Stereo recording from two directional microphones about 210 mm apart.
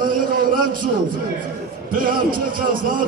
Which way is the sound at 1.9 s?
40° right (ahead or behind).